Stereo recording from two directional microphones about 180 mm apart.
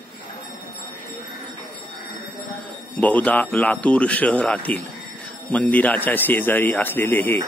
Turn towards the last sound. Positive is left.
turn(degrees=10)  # may be behind; listen again after turning